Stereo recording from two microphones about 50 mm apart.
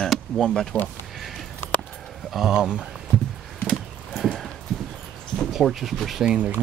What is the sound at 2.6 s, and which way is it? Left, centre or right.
Speech, centre.